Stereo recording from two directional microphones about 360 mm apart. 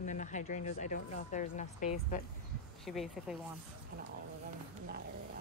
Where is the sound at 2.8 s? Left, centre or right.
Centre.